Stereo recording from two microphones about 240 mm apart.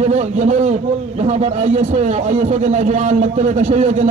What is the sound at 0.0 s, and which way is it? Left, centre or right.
A man's voice, right.